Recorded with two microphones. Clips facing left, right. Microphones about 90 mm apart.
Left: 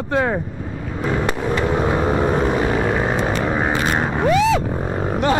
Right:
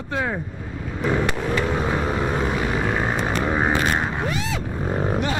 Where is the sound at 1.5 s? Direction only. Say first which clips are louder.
Left 5 dB; 20° left (ahead or behind).